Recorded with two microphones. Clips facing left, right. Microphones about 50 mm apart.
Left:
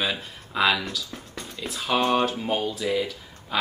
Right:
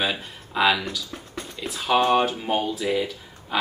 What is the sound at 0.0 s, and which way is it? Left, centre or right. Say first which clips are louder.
Speech: right 2 dB; centre.